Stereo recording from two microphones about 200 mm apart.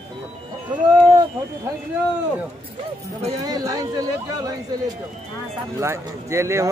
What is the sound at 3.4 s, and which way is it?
Speech, 20° right (ahead or behind).